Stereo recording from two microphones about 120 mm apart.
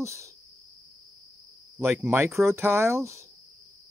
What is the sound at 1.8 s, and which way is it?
Speech, 20° right (ahead or behind).